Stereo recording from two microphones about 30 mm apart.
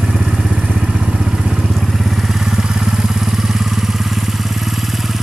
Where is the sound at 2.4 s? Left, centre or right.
Centre.